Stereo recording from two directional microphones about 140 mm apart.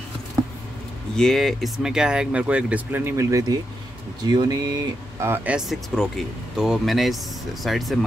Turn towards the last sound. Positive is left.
turn(degrees=0)  # may be behind; listen again after turning